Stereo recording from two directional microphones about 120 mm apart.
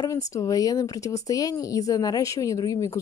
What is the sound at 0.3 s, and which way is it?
A woman's voice, 30° left (ahead or behind).